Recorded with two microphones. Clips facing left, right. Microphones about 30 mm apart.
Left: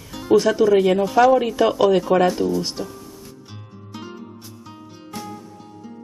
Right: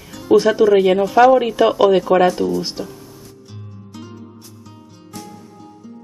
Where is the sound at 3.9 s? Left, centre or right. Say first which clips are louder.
Left 2 dB; centre.